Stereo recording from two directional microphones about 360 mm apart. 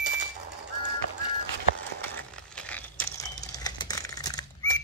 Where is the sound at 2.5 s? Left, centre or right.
Centre.